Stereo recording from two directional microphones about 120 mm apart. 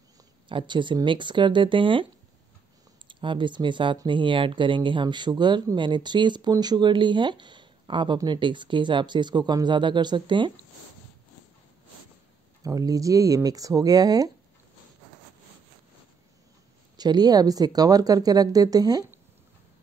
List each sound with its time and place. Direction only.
0.5 s speech: 45° right (ahead or behind)
3.1 s speech: 40° right (ahead or behind)
12.6 s speech: 30° right (ahead or behind)
16.9 s speech: 35° right (ahead or behind)